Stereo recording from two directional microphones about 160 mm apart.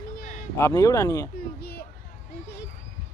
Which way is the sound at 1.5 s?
75° left (ahead or behind).